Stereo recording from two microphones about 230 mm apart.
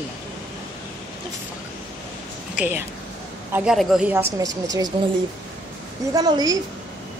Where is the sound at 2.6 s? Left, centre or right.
Centre.